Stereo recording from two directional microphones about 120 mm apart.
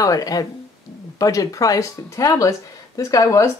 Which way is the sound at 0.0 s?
30° left (ahead or behind).